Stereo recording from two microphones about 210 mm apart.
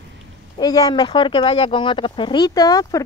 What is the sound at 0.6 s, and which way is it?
Speech, 20° left (ahead or behind).